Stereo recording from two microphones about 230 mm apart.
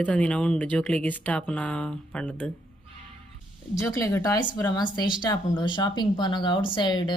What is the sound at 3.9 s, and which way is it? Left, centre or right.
Speech, centre.